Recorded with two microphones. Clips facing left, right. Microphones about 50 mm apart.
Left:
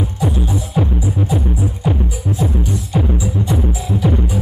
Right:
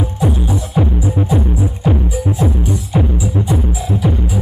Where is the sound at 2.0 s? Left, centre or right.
Right.